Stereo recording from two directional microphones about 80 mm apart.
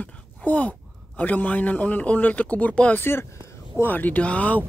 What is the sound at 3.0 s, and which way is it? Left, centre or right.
Speech, left.